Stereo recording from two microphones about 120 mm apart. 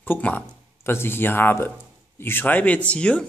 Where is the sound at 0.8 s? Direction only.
20° left (ahead or behind).